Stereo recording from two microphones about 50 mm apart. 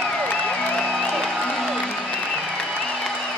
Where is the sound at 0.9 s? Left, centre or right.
Centre.